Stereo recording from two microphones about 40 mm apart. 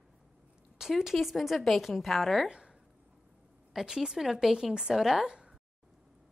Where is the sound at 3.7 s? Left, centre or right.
Centre.